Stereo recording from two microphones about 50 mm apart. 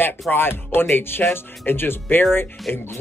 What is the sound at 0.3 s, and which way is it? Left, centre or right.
Speech, left.